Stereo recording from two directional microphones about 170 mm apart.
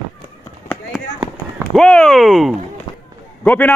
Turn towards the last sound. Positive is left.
turn(degrees=10)  # may be behind; listen again after turning